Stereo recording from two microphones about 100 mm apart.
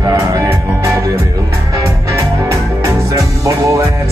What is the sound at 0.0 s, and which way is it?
Music, 35° right (ahead or behind).